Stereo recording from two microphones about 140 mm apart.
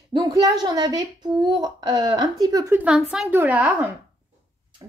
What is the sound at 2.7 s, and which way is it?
A woman's voice, 10° right (ahead or behind).